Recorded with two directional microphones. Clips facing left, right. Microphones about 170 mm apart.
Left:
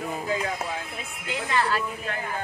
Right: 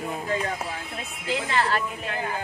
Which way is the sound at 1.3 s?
30° right (ahead or behind).